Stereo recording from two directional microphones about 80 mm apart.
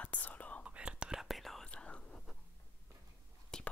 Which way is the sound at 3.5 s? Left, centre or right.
Centre.